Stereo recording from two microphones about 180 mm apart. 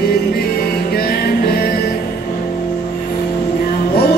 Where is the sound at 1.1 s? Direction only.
60° left (ahead or behind).